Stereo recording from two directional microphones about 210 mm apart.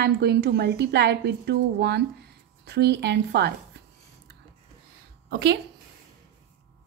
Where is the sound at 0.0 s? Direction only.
50° right (ahead or behind).